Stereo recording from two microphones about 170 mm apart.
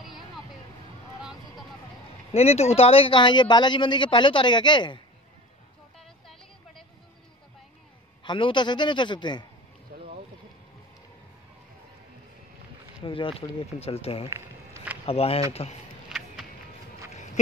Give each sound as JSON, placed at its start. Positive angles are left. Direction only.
{"t": 2.3, "sound": "speech", "side_deg": 35}
{"t": 8.2, "sound": "speech", "side_deg": 30}
{"t": 9.9, "sound": "a sound", "side_deg": -60}
{"t": 13.0, "sound": "speech", "side_deg": 30}
{"t": 14.3, "sound": "a sound", "side_deg": -15}
{"t": 15.0, "sound": "speech", "side_deg": 35}
{"t": 16.1, "sound": "music", "side_deg": 0}